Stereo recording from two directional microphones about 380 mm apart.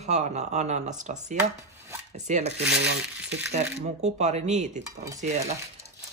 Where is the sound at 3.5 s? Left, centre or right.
Centre.